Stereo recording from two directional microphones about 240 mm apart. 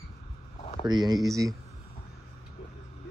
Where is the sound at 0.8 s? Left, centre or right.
Centre.